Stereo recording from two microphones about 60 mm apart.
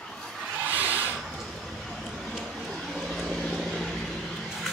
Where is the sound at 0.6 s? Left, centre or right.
Right.